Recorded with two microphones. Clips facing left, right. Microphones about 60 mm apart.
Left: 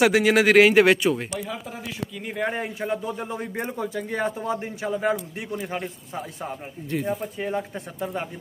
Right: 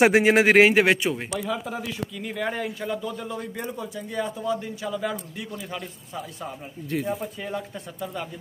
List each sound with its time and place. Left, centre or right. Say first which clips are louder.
0.0 s a man's voice: right 1 dB; right
1.4 s speech: right 4 dB; centre
2.3 s a man's voice: left 2 dB; left
6.9 s speech: left 1 dB; centre
7.3 s a man's voice: left 4 dB; left